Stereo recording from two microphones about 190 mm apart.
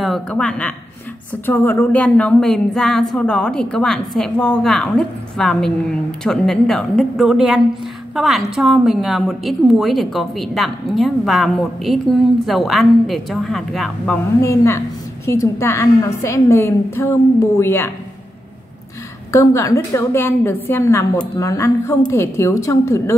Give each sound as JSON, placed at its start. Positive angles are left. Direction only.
{"t": 0.0, "sound": "a woman's voice", "side_deg": 5}
{"t": 19.3, "sound": "a woman's voice", "side_deg": 15}